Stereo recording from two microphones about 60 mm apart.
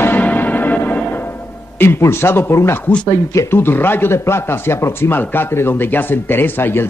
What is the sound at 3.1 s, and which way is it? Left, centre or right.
Speech, left.